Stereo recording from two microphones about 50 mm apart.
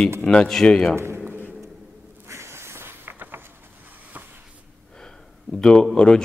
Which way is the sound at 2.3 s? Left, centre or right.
Right.